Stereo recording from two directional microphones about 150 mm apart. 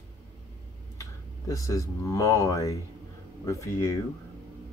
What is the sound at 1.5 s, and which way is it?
Speech, 20° left (ahead or behind).